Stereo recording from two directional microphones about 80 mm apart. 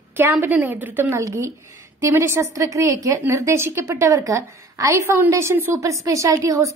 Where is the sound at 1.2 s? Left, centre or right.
Right.